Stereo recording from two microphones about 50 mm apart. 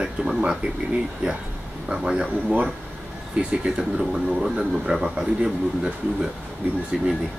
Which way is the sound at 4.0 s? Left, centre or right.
Centre.